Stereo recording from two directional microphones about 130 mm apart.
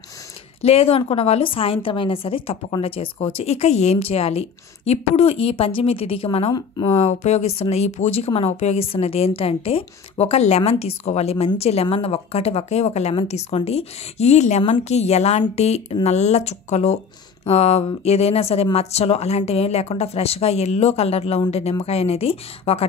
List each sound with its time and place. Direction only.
0.6 s a woman's voice: 50° left (ahead or behind)